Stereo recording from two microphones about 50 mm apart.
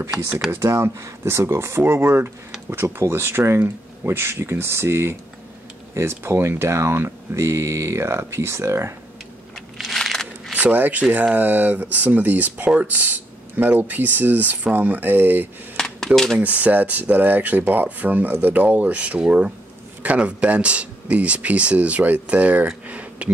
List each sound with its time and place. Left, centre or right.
0.6 s speech: right
9.8 s coin: centre
10.5 s speech: right